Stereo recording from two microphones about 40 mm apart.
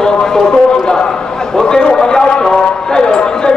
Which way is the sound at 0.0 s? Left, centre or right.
Centre.